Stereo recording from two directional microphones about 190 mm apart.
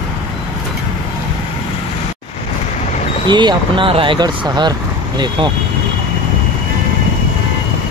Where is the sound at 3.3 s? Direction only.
25° right (ahead or behind).